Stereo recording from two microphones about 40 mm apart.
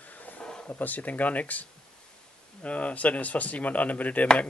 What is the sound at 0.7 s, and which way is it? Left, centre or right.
Speech, left.